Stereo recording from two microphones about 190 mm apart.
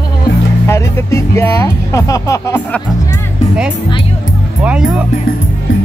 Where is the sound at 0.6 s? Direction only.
15° left (ahead or behind).